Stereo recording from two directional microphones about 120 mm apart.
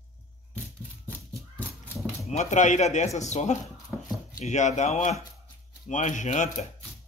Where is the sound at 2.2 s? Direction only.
70° left (ahead or behind).